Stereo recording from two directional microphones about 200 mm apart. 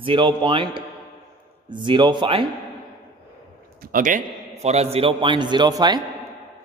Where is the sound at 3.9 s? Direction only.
40° right (ahead or behind); by 6.0 s 20° right (ahead or behind).